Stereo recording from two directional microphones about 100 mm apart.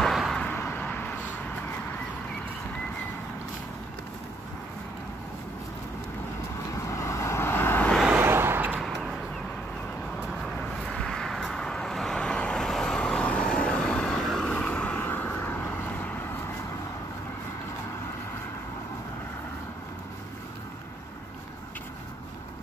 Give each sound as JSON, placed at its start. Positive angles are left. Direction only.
{"t": 0.0, "sound": "vehicle", "side_deg": 0}
{"t": 0.4, "sound": "vehicle", "side_deg": 20}
{"t": 6.7, "sound": "vehicle", "side_deg": 30}
{"t": 8.2, "sound": "vehicle", "side_deg": -25}
{"t": 10.3, "sound": "vehicle", "side_deg": 5}